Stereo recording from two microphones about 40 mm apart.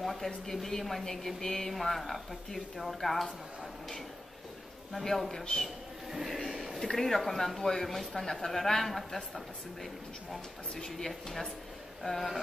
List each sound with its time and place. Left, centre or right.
0.0 s speech: centre
5.0 s speech: centre
6.1 s speech: centre
6.5 s a sound: centre
6.9 s speech: centre
10.8 s speech: centre